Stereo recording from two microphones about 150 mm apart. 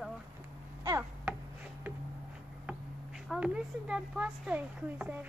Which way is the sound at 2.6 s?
5° right (ahead or behind).